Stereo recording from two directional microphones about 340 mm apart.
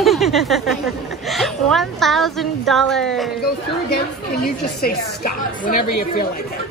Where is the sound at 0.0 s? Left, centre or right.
Centre.